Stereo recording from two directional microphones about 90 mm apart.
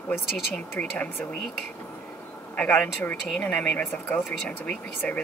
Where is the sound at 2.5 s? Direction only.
15° left (ahead or behind).